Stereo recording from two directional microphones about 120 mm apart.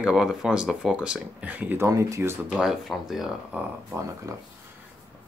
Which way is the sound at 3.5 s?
15° right (ahead or behind).